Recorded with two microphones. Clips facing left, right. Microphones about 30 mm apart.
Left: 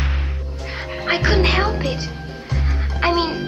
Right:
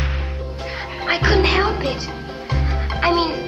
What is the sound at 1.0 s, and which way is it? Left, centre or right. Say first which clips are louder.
Speech: right 1 dB; centre.